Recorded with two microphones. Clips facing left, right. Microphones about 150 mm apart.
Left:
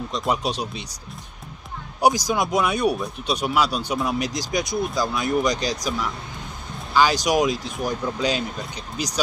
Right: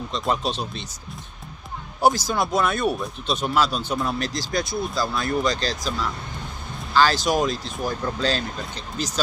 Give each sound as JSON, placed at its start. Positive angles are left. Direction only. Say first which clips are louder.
{"t": 0.2, "sound": "speech", "louder": "even", "side_deg": 10}
{"t": 2.0, "sound": "speech", "louder": "left 1 dB", "side_deg": 15}